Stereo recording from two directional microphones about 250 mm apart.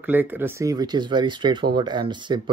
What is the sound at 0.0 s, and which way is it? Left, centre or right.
Speech, centre.